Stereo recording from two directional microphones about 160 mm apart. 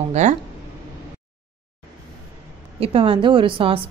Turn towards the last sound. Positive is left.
turn(degrees=-35)  # may be behind; listen again after turning